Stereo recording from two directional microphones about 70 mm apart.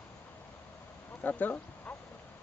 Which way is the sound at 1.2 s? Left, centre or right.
Left.